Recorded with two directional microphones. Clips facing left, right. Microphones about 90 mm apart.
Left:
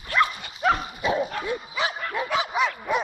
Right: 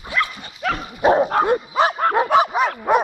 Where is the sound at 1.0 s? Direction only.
55° right (ahead or behind).